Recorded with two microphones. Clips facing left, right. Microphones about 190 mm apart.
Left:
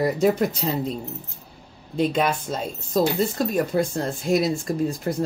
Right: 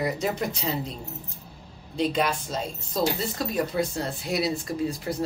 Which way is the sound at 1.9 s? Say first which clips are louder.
Left 3 dB; 50° left (ahead or behind).